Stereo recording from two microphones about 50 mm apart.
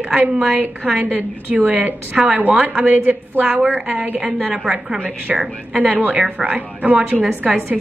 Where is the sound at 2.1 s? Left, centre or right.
Centre.